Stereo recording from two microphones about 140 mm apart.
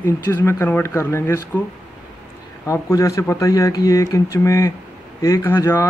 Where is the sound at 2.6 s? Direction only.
25° left (ahead or behind).